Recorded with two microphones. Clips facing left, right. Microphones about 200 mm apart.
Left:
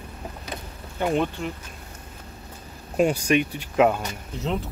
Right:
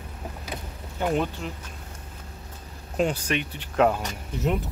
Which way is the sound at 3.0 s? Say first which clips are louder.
Left 5 dB; 10° left (ahead or behind).